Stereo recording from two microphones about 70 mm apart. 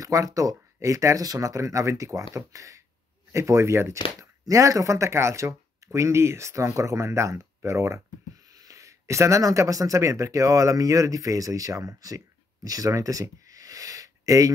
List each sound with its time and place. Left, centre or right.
0.0 s speech: right
8.5 s speech: right
12.6 s a sound: right